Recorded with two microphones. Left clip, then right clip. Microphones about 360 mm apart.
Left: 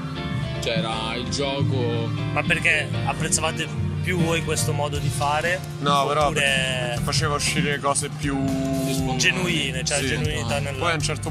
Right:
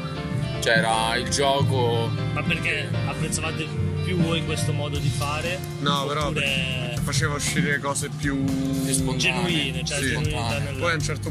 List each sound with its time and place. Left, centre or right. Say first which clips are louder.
0.7 s music: right 6 dB; right
2.3 s speech: left 6 dB; centre
5.9 s speech: left 5 dB; centre
9.2 s speech: left 2 dB; centre